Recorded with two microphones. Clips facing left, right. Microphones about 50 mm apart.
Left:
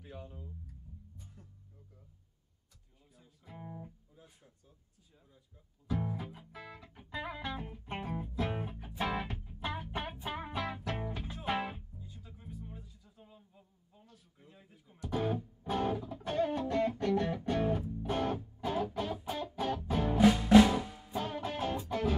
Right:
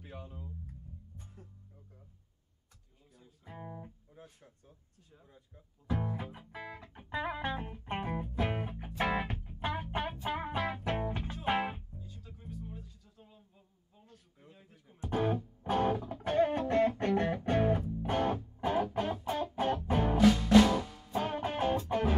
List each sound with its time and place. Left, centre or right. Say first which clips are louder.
0.0 s music: right 1 dB; right
3.4 s music: right 2 dB; right
4.1 s a sound: right 5 dB; right
5.9 s music: right 1 dB; right
12.0 s music: right 1 dB; centre
13.2 s a sound: left 2 dB; centre
14.7 s music: right 1 dB; right
20.2 s music: left 1 dB; centre
21.1 s music: right 3 dB; right